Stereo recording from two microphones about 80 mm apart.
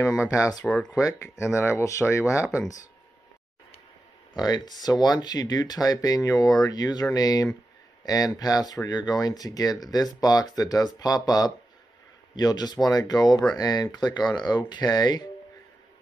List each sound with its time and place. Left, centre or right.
0.0 s speech: left
4.3 s speech: left